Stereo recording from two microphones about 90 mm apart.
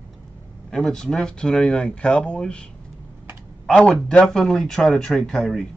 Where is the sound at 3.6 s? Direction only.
5° left (ahead or behind).